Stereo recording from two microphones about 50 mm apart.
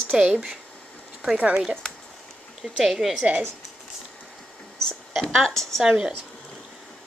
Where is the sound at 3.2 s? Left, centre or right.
Right.